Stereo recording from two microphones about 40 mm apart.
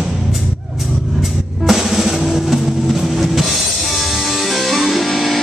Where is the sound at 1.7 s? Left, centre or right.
Centre.